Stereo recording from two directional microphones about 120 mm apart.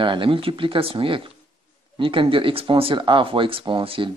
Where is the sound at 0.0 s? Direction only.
45° right (ahead or behind).